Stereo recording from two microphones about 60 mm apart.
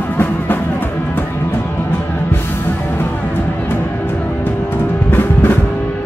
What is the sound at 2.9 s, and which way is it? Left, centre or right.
Music, left.